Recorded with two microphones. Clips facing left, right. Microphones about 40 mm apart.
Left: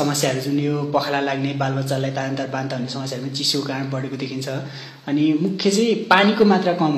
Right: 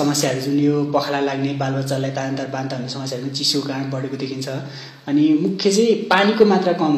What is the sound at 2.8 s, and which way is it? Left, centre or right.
Speech, left.